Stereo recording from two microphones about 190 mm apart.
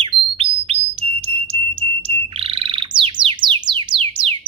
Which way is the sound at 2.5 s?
25° right (ahead or behind).